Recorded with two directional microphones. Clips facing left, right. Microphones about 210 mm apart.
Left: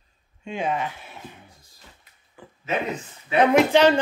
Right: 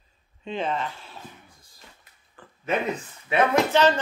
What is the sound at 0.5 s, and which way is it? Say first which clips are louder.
Speech: left 1 dB; 10° left (ahead or behind).